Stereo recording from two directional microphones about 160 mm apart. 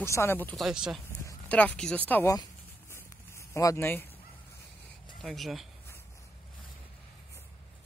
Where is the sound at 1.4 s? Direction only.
10° left (ahead or behind).